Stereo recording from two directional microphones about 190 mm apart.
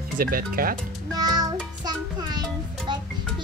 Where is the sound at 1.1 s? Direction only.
20° right (ahead or behind).